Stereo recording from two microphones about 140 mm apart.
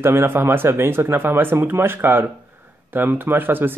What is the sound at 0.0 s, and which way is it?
Speech, 15° right (ahead or behind).